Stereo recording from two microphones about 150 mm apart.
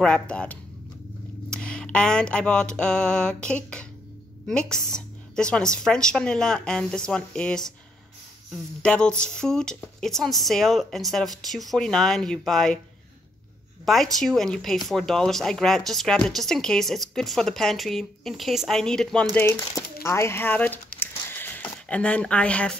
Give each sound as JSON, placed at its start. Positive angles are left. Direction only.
{"t": 0.0, "sound": "speech", "side_deg": 5}
{"t": 1.5, "sound": "a sound", "side_deg": 5}
{"t": 4.5, "sound": "speech", "side_deg": 5}
{"t": 8.8, "sound": "speech", "side_deg": 5}
{"t": 13.8, "sound": "speech", "side_deg": 0}
{"t": 21.0, "sound": "a sound", "side_deg": 15}